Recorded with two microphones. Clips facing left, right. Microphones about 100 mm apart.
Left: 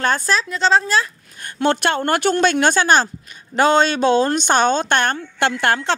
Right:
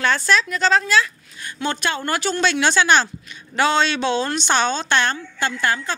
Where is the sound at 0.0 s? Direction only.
45° left (ahead or behind).